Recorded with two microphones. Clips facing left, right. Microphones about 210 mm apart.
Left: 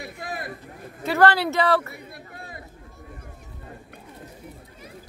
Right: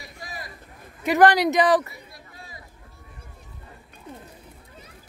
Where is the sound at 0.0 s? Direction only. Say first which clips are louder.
Left 6 dB; 60° left (ahead or behind).